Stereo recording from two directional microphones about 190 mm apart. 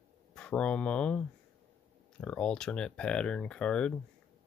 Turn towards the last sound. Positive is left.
turn(degrees=5)  # may be behind; listen again after turning